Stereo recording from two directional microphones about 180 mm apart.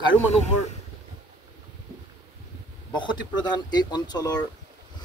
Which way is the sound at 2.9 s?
25° left (ahead or behind).